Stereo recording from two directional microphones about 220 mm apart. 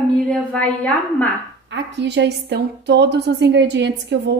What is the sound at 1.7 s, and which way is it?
A woman's voice, 50° right (ahead or behind).